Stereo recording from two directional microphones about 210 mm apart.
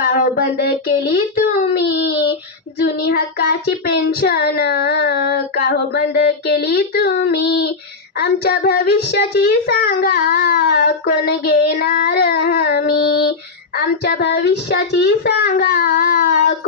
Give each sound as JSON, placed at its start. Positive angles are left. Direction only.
{"t": 0.0, "sound": "child singing", "side_deg": 45}
{"t": 2.8, "sound": "a child's voice", "side_deg": 45}